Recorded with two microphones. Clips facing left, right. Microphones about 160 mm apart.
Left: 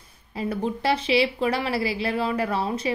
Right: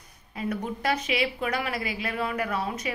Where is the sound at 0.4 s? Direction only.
30° left (ahead or behind).